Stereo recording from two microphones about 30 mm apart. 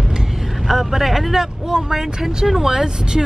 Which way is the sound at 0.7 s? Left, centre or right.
Centre.